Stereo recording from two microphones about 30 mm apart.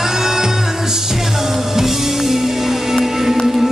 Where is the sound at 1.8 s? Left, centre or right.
Centre.